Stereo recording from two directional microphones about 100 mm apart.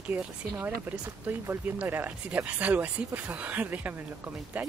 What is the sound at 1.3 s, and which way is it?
Speech, 20° right (ahead or behind).